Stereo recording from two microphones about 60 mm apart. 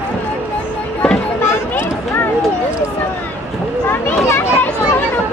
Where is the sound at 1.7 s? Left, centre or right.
Left.